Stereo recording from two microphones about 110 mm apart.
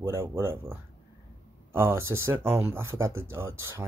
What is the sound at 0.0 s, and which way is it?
Speech, 25° right (ahead or behind).